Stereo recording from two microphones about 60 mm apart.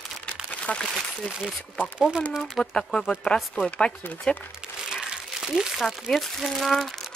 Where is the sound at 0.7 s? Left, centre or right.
Left.